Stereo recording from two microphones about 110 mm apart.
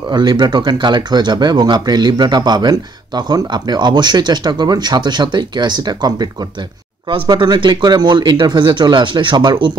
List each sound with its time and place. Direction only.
0.1 s speech: 40° right (ahead or behind)
7.2 s speech: 40° right (ahead or behind)